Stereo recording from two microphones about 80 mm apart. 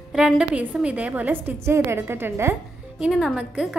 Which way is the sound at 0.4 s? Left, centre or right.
Centre.